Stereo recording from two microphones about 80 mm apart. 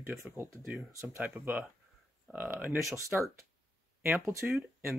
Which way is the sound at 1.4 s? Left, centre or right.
Right.